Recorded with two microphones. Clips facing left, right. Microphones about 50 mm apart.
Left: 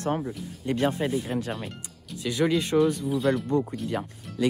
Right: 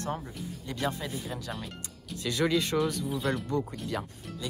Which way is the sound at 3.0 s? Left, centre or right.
Centre.